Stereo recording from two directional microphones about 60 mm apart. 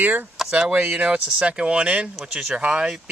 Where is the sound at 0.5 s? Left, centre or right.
Centre.